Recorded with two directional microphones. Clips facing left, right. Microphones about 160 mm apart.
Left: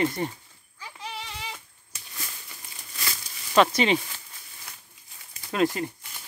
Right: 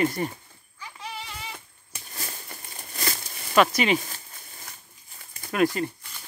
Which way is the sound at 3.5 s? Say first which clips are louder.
Even; 25° left (ahead or behind).